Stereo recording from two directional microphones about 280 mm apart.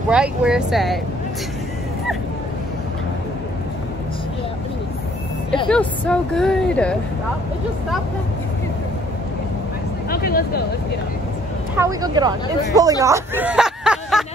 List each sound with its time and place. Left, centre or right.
0.1 s speech: centre
5.7 s speech: centre
10.0 s speech: left
11.7 s speech: centre